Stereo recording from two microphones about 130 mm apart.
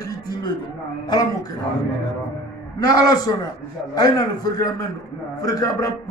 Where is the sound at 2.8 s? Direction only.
30° left (ahead or behind).